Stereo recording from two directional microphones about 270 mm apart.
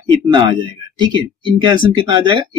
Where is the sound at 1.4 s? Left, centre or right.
Centre.